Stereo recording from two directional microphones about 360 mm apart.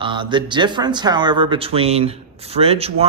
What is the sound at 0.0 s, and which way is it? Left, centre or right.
Speech, centre.